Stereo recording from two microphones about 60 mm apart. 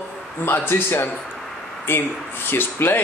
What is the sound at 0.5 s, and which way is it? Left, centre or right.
Speech, left.